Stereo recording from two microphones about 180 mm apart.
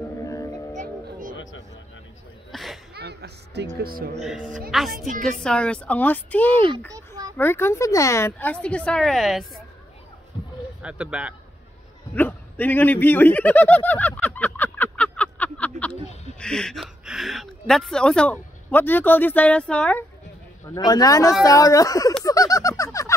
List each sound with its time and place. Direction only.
0.2 s music: 15° left (ahead or behind)
1.3 s music: 90° left
2.5 s a sound: centre (ahead or behind)
2.9 s music: 65° right (ahead or behind)
4.2 s speech: centre (ahead or behind)
6.9 s a sound: 20° right (ahead or behind)
7.3 s speech: 10° left (ahead or behind)
10.8 s a man's voice: 5° right (ahead or behind)
12.2 s a sound: 10° left (ahead or behind)
16.3 s speech: 5° left (ahead or behind)
20.7 s speech: 20° left (ahead or behind)
22.2 s a sound: 20° left (ahead or behind)